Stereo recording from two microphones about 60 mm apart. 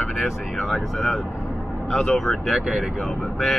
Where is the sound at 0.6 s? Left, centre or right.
Centre.